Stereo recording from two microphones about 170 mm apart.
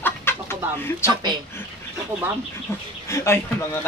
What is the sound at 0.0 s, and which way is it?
Chicken, 15° left (ahead or behind).